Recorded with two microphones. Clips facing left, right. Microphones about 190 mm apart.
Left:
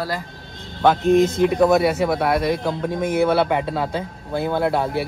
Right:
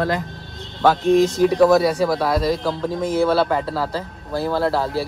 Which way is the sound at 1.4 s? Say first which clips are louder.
Right 2 dB; 20° left (ahead or behind).